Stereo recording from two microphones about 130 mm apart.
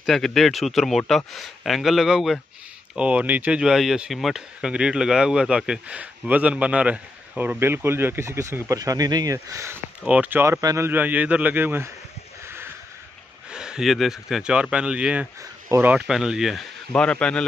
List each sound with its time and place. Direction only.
0.0 s a man's voice: 5° left (ahead or behind); by 9.8 s 25° right (ahead or behind)
10.0 s speech: 10° right (ahead or behind)
10.9 s speech: 10° right (ahead or behind)
13.5 s a man's voice: 5° right (ahead or behind)
16.1 s a man's voice: 5° right (ahead or behind)
16.9 s a man's voice: 10° left (ahead or behind)